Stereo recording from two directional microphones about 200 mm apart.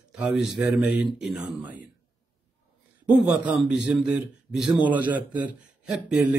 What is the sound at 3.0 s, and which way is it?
Speech, 5° right (ahead or behind).